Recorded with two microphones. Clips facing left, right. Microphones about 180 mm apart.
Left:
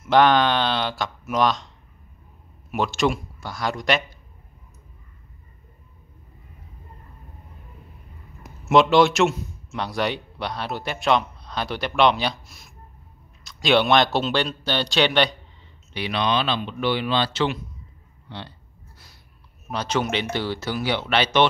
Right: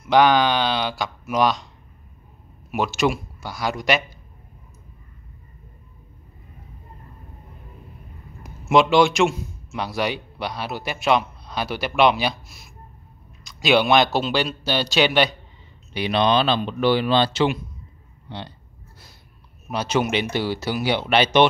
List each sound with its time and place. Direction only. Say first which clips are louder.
0.0 s speech: right 1 dB; centre (ahead or behind)
2.7 s speech: right 1 dB; 5° right (ahead or behind)
8.4 s a man's voice: even; centre (ahead or behind)
16.1 s speech: right 4 dB; 35° right (ahead or behind)
19.7 s speech: right 2 dB; 10° right (ahead or behind)